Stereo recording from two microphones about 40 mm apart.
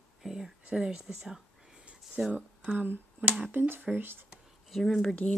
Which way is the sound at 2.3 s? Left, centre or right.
Right.